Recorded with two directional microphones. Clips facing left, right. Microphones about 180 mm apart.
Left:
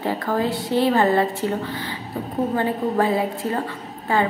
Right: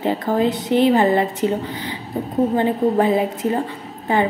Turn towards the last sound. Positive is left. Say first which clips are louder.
# right 2 dB
turn(degrees=-20)  # may be behind; listen again after turning